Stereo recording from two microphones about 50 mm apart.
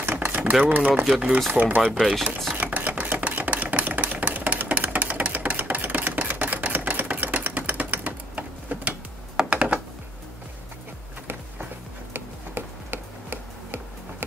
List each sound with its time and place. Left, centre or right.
0.2 s a sound: right
0.7 s speech: right
1.8 s speech: centre
2.5 s a sound: right
9.5 s computer keyboard: right
12.1 s tick-tock: right